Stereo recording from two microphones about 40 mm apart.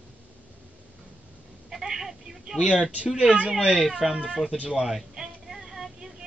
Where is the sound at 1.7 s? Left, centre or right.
Centre.